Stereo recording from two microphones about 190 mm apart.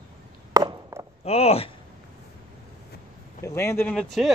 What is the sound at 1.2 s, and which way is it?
Speech, 30° left (ahead or behind).